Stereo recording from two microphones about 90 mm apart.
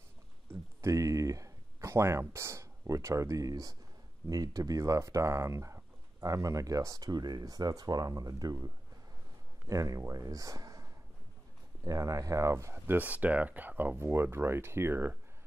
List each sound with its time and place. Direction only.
0.7 s speech: 35° right (ahead or behind)
9.7 s a man's voice: 40° right (ahead or behind)